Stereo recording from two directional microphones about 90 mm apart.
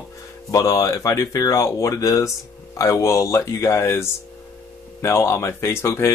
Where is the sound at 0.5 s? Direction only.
35° left (ahead or behind).